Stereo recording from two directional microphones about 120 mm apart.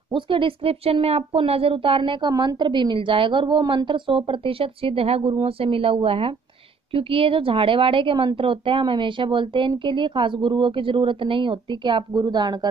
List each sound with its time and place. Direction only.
0.1 s speech: 45° right (ahead or behind)